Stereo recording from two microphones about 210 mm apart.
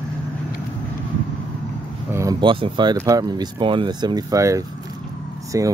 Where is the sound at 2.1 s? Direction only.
15° right (ahead or behind).